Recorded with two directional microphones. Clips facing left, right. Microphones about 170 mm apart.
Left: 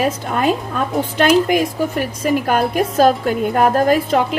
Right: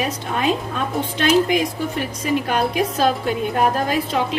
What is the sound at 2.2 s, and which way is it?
A woman's voice, 50° left (ahead or behind).